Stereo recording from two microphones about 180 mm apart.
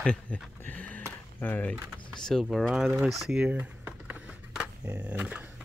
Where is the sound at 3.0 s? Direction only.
Centre (ahead or behind).